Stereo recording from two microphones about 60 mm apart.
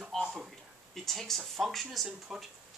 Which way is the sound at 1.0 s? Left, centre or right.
Centre.